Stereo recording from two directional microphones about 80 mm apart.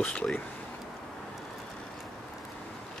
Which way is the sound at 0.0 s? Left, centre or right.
Centre.